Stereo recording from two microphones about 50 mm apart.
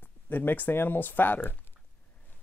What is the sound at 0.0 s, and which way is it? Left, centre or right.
Speech, left.